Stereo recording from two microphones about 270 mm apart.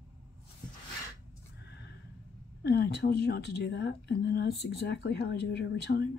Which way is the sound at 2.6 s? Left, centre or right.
Left.